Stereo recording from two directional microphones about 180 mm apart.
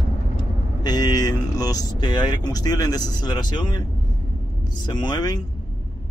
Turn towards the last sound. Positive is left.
turn(degrees=20)  # may be behind; listen again after turning